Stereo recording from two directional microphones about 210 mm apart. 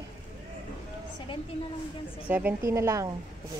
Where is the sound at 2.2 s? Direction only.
10° right (ahead or behind).